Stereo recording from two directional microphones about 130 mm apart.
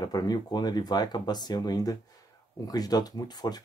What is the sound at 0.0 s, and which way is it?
Speech, 30° left (ahead or behind).